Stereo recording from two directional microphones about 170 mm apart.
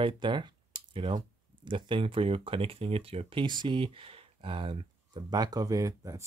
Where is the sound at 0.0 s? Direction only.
30° right (ahead or behind).